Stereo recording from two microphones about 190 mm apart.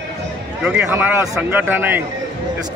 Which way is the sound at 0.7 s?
10° right (ahead or behind).